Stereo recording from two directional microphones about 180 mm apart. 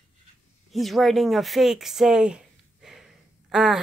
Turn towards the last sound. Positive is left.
turn(degrees=0)  # may be behind; listen again after turning